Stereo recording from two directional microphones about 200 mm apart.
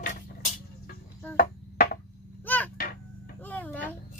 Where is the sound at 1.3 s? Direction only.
45° left (ahead or behind).